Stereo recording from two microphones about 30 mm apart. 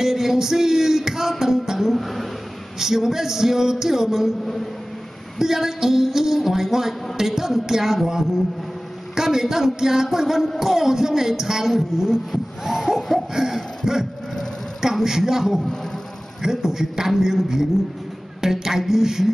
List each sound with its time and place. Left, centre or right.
0.0 s a sound: centre
2.0 s speech: centre
2.8 s a woman's voice: centre
5.4 s a woman's voice: centre
9.1 s a woman's voice: centre